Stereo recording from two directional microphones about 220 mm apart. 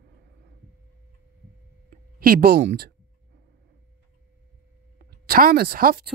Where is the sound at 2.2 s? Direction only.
45° right (ahead or behind).